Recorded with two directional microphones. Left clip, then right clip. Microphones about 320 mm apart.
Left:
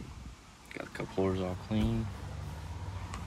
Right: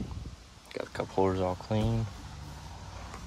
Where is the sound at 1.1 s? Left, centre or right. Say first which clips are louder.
Right 5 dB; right.